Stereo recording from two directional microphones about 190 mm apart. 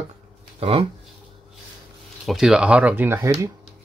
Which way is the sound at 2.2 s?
Centre (ahead or behind).